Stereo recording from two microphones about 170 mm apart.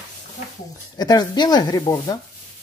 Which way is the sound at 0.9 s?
25° left (ahead or behind).